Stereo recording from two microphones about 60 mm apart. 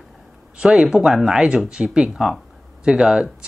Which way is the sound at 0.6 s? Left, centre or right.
Centre.